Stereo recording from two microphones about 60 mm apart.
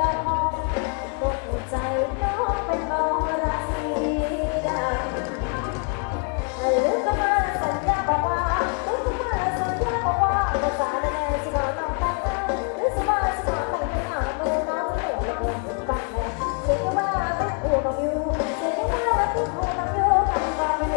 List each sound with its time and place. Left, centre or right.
0.0 s music: centre
6.6 s music: centre